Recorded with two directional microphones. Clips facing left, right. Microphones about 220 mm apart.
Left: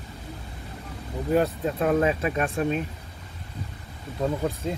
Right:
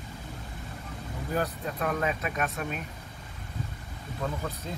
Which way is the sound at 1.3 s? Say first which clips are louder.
Left 8 dB; 25° left (ahead or behind).